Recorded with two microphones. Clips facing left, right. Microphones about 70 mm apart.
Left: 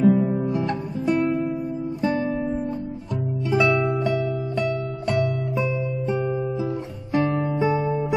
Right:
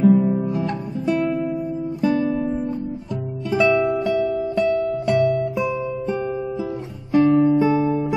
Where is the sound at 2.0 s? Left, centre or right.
Centre.